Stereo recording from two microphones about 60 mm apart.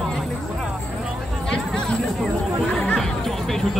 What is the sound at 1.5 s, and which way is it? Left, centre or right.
Chatter, centre.